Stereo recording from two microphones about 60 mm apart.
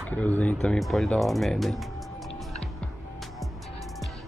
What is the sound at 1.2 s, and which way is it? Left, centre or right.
Music, centre.